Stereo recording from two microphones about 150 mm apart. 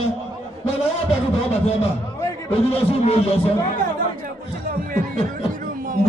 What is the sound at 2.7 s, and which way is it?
Speech, 40° left (ahead or behind).